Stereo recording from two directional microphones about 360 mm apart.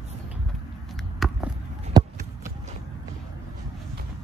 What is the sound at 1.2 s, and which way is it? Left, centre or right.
Basketball bounce, centre.